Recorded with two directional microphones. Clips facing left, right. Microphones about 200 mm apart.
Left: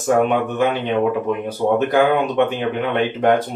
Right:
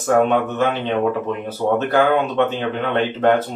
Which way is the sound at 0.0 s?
10° left (ahead or behind).